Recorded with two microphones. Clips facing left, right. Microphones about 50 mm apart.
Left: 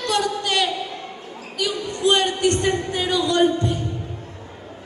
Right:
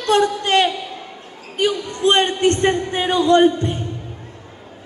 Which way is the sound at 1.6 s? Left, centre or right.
Right.